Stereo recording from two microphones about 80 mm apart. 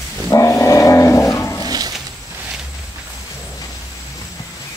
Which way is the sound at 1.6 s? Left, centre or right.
Right.